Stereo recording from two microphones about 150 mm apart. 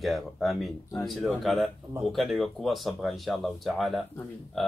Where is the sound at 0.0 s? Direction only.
Centre (ahead or behind).